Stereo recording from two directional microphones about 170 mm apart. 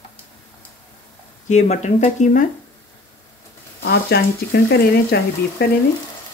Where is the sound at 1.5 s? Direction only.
45° left (ahead or behind).